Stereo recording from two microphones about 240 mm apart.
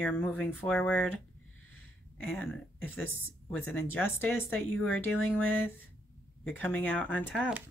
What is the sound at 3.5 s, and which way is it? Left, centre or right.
Speech, centre.